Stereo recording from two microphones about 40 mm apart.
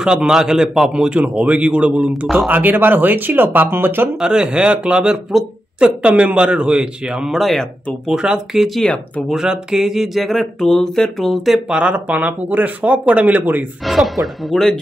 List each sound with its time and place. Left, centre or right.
0.0 s a man's voice: centre
1.2 s speech: right
2.5 s speech: right
4.2 s a man's voice: right
5.3 s speech: centre
5.8 s a man's voice: right
7.2 s a woman's voice: centre
8.1 s a man's voice: right
8.5 s a woman's voice: centre
9.3 s speech: centre
10.1 s a woman's voice: centre
11.7 s speech: right
13.4 s speech: right
13.8 s a woman's voice: centre